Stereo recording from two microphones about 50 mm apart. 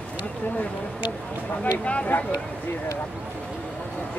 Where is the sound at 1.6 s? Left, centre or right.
Left.